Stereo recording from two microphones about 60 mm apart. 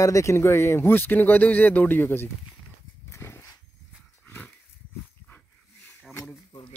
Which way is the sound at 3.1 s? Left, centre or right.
Left.